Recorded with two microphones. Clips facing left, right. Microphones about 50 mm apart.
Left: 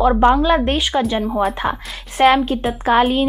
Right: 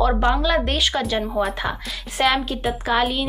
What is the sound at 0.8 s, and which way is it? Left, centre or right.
Speech, centre.